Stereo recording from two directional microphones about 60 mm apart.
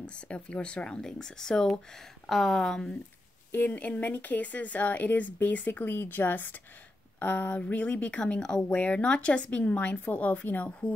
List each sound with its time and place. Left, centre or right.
0.0 s speech: centre
3.7 s speech: left